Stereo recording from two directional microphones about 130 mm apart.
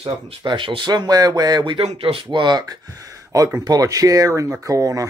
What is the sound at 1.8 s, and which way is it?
Speech, 50° right (ahead or behind).